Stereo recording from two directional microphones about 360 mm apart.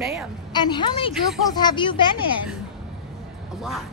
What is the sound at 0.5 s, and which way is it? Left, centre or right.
A woman's voice, centre.